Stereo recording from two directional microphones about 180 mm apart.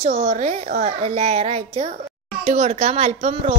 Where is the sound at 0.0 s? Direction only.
35° right (ahead or behind).